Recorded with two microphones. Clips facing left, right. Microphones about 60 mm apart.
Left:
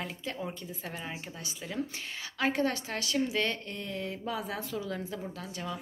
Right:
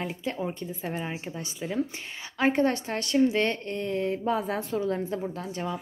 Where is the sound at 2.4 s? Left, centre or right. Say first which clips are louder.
Right 6 dB; right.